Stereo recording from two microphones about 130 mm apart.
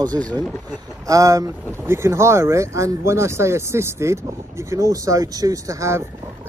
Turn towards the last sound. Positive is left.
turn(degrees=-20)  # may be behind; listen again after turning